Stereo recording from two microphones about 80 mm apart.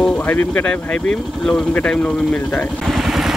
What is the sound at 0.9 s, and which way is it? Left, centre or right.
Speech, centre.